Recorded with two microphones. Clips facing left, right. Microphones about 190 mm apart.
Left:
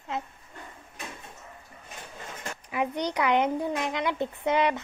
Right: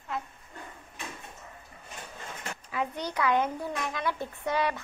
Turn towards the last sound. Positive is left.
turn(degrees=20)  # may be behind; listen again after turning